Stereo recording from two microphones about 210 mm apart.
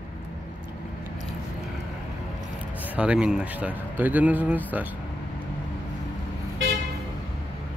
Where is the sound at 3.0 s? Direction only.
5° right (ahead or behind).